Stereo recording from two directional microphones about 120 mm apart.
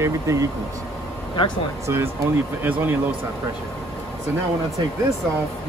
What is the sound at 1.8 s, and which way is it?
Speech, 20° right (ahead or behind).